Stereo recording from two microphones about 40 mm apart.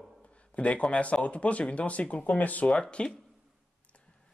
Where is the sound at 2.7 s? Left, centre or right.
Left.